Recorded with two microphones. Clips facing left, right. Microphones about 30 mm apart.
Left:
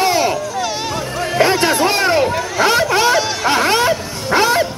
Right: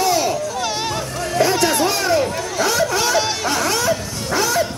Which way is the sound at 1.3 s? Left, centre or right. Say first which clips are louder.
Left 3 dB; left.